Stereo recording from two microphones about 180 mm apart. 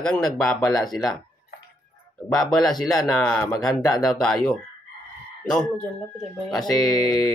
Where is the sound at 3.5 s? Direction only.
20° left (ahead or behind).